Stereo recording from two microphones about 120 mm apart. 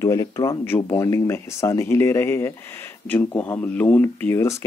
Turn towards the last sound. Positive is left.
turn(degrees=25)  # may be behind; listen again after turning